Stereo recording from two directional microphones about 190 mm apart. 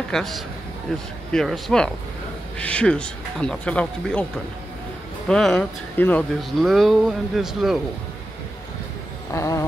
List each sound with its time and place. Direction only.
0.1 s a man's voice: centre (ahead or behind)
5.3 s speech: 5° left (ahead or behind)
9.3 s a sound: 15° left (ahead or behind)